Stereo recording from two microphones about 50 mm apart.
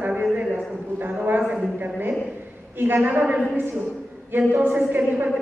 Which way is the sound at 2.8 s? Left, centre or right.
Right.